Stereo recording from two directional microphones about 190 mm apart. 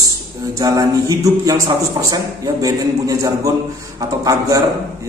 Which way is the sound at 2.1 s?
20° right (ahead or behind).